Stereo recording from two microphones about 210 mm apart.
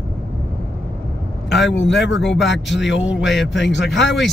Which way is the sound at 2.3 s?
60° left (ahead or behind).